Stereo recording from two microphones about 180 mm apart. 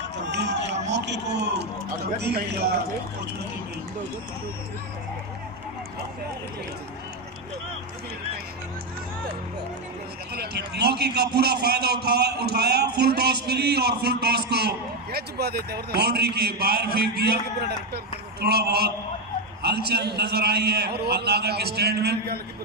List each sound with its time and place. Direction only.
0.2 s speech: 75° right (ahead or behind)
10.3 s a man's voice: 65° right (ahead or behind)